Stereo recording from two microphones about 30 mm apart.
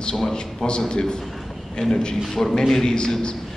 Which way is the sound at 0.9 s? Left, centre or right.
Left.